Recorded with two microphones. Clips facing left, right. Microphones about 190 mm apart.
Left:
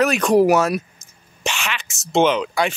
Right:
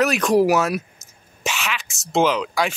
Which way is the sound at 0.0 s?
Centre (ahead or behind).